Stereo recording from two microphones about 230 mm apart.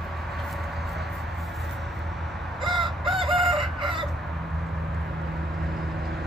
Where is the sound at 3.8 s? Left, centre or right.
Right.